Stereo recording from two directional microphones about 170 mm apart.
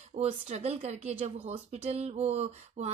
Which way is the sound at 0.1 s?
40° right (ahead or behind).